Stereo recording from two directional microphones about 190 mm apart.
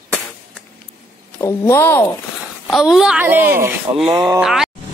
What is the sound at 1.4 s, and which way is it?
Speech, 15° left (ahead or behind).